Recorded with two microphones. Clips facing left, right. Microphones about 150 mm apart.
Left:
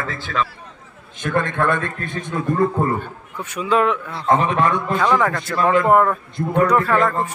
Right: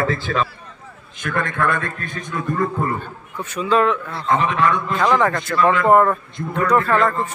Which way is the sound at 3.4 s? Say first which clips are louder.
Right 1 dB; 10° left (ahead or behind).